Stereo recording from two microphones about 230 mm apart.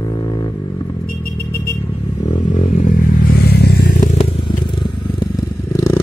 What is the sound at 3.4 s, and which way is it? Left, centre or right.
Vehicle, left.